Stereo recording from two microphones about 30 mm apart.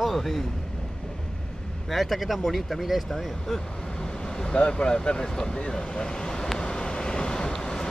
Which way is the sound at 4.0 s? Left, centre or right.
Left.